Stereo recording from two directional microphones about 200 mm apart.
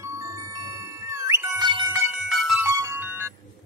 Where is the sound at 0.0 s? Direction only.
15° right (ahead or behind).